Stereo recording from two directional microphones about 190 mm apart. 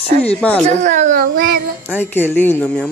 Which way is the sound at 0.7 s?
40° right (ahead or behind).